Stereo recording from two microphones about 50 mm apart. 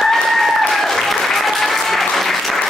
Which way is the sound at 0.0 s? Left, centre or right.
Centre.